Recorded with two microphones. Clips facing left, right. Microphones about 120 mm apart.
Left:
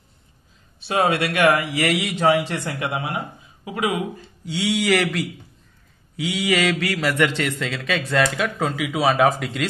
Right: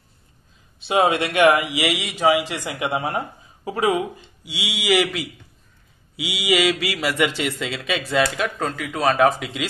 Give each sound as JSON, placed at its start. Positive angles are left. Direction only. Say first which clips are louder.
{"t": 0.7, "sound": "speech", "louder": "right 2 dB", "side_deg": -20}
{"t": 1.9, "sound": "speech", "louder": "left 1 dB", "side_deg": 0}
{"t": 2.6, "sound": "speech", "louder": "right 1 dB", "side_deg": -15}
{"t": 2.9, "sound": "speech", "louder": "right 3 dB", "side_deg": -30}
{"t": 4.5, "sound": "speech", "louder": "left 2 dB", "side_deg": 0}